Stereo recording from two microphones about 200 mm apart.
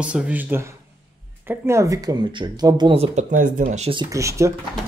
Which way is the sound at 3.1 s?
40° right (ahead or behind).